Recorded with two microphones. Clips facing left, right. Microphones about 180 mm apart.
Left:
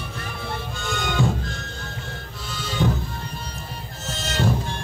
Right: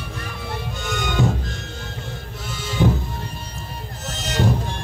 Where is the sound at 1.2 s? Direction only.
20° right (ahead or behind).